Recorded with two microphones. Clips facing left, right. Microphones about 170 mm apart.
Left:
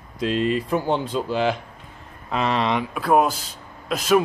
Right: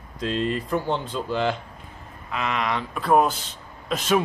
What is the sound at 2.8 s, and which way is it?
Speech, 5° left (ahead or behind).